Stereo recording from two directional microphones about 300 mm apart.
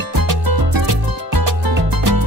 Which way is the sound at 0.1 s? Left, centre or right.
Right.